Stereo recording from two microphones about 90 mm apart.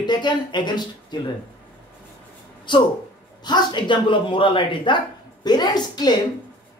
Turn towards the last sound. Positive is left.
turn(degrees=50)  # may be behind; listen again after turning